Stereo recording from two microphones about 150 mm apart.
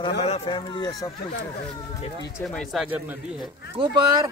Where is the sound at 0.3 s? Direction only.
35° left (ahead or behind).